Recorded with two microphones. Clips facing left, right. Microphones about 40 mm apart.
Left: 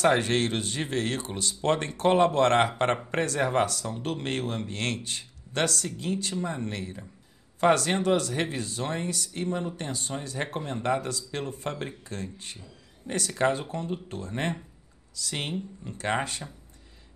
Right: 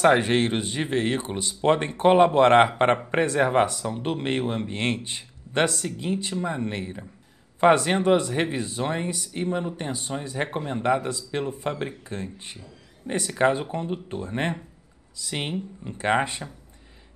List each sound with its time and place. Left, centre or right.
0.0 s speech: centre